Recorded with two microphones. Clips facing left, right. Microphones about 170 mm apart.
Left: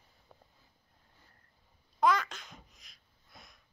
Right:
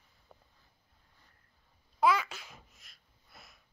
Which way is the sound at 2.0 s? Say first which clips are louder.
Even; 5° right (ahead or behind).